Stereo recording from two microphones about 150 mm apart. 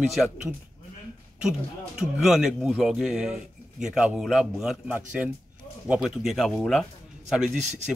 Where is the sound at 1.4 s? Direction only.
5° right (ahead or behind).